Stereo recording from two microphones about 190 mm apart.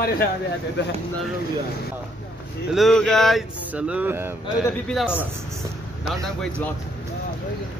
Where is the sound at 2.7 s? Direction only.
Centre (ahead or behind).